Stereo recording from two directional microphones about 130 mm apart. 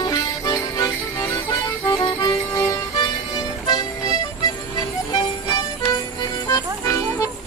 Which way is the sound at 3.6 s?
30° left (ahead or behind).